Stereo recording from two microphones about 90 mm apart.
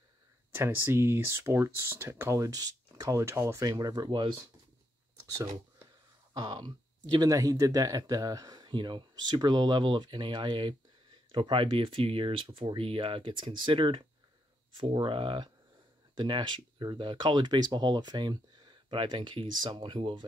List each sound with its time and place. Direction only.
0.5 s speech: 25° right (ahead or behind); by 4.3 s 55° right (ahead or behind)
6.3 s speech: 50° right (ahead or behind); by 20.2 s 70° right (ahead or behind)